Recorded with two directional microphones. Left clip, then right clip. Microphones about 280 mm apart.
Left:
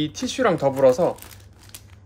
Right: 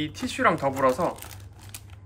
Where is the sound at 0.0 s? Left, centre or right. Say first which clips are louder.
Left 2 dB; centre.